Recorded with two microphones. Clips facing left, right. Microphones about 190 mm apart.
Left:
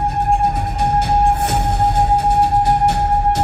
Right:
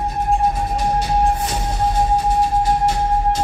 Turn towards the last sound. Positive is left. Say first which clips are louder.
# left 2 dB
turn(degrees=65)  # may be behind; listen again after turning